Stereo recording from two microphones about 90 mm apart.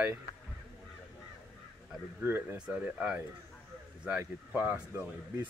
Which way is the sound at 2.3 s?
15° right (ahead or behind).